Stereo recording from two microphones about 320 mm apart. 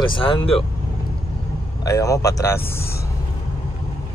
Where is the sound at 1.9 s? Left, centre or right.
Centre.